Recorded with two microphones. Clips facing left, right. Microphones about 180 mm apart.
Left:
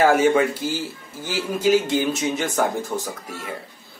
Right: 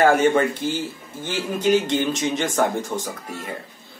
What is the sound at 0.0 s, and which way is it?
Speech, 10° left (ahead or behind).